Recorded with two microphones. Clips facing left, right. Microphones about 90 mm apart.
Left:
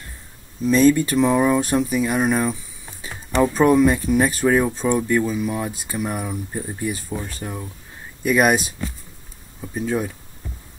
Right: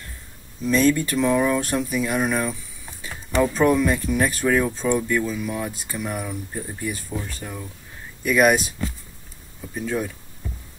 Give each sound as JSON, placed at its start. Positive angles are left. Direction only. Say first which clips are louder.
{"t": 0.7, "sound": "speech", "louder": "left 4 dB", "side_deg": 15}
{"t": 3.0, "sound": "music", "louder": "left 1 dB", "side_deg": 15}
{"t": 3.4, "sound": "speech", "louder": "left 4 dB", "side_deg": 15}
{"t": 9.6, "sound": "speech", "louder": "left 3 dB", "side_deg": 15}